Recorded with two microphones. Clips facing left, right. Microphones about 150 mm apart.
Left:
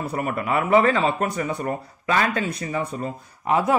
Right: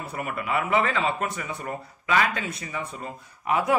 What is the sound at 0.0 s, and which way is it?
A man's voice, 40° left (ahead or behind).